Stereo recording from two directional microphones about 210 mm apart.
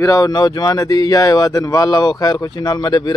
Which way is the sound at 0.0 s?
15° left (ahead or behind).